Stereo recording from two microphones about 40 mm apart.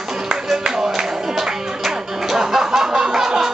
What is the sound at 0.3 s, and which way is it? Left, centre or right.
Music, centre.